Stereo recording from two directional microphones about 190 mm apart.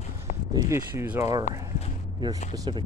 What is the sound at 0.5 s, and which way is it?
Speech, 15° right (ahead or behind).